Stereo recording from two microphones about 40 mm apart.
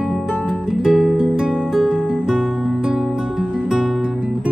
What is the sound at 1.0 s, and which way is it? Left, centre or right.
Music, centre.